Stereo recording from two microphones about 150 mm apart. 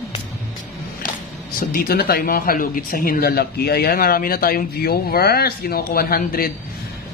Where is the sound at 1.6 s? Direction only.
80° left.